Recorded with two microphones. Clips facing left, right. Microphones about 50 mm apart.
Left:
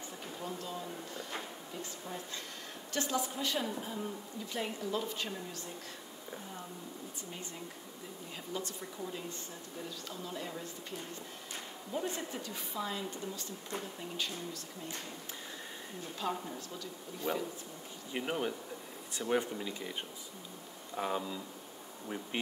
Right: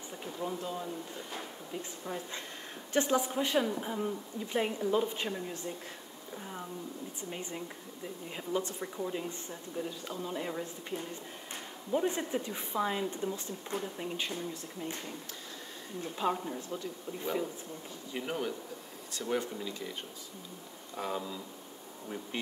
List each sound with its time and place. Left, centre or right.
0.4 s speech: centre
7.2 s speech: right
16.2 s speech: right
18.1 s speech: centre